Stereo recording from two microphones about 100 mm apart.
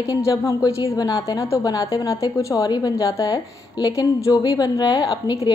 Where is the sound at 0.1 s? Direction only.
35° left (ahead or behind).